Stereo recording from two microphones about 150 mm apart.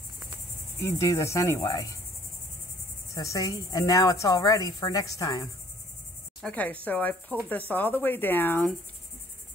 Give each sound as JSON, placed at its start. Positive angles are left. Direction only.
{"t": 0.9, "sound": "cricket", "side_deg": 20}
{"t": 3.2, "sound": "cricket", "side_deg": 25}
{"t": 6.4, "sound": "speech", "side_deg": 10}